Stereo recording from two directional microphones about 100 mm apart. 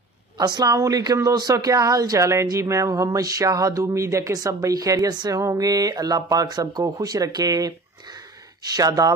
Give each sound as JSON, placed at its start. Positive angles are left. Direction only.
{"t": 0.4, "sound": "speech", "side_deg": -40}